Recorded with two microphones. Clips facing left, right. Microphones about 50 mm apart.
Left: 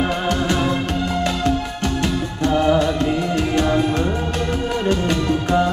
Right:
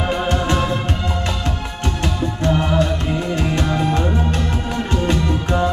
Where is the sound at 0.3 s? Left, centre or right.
Right.